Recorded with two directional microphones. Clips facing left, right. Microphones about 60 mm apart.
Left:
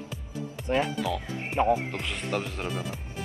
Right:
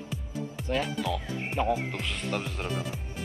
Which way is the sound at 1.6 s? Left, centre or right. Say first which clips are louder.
Left 4 dB; left.